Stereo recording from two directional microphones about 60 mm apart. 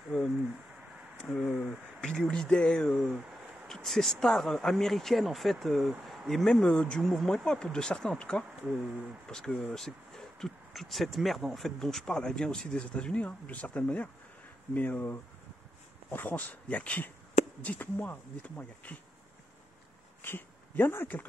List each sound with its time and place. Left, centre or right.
1.3 s speech: centre
3.6 s speech: centre
6.5 s speech: centre
7.0 s speech: centre
7.2 s speech: centre
20.2 s speech: left